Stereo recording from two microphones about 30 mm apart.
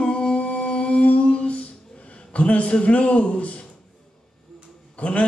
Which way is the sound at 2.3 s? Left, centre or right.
Left.